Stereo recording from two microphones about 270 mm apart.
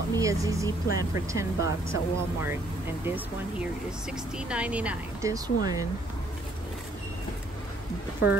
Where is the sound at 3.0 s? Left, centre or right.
Centre.